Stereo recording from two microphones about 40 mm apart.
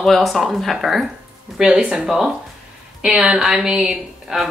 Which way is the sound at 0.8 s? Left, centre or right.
Centre.